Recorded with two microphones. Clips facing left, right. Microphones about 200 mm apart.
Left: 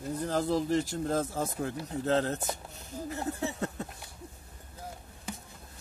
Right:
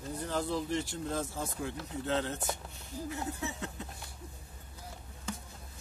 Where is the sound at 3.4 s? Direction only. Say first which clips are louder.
Left 5 dB; 40° left (ahead or behind).